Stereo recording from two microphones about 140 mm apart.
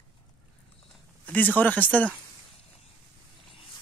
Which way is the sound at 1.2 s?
10° left (ahead or behind).